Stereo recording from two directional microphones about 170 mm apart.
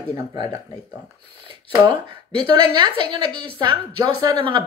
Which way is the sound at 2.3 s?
25° right (ahead or behind).